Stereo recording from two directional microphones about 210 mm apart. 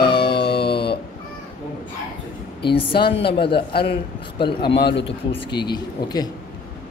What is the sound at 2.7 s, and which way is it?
Speech, 25° left (ahead or behind).